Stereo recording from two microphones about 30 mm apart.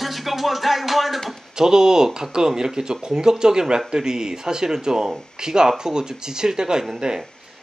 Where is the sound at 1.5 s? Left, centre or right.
Right.